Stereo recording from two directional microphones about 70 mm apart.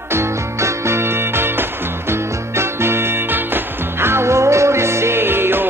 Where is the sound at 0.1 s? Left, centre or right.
Right.